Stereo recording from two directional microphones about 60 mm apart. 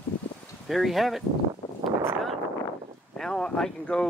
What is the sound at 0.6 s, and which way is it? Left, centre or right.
Speech, centre.